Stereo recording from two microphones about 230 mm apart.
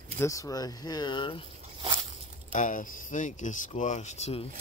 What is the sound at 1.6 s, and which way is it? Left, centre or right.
Snake, right.